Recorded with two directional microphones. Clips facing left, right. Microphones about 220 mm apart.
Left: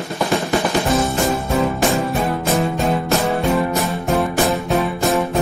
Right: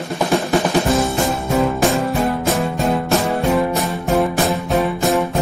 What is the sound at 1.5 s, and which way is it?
Music, centre (ahead or behind).